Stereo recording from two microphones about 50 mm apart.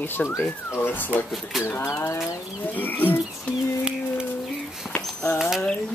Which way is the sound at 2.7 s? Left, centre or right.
Left.